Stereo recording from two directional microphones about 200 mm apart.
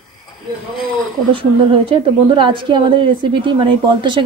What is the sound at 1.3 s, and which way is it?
A woman's voice, 25° right (ahead or behind).